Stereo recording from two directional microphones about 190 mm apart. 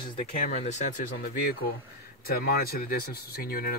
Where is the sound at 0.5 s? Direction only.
40° left (ahead or behind).